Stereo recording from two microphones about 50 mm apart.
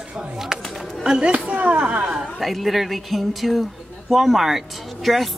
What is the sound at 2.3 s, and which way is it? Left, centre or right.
A woman's voice, centre.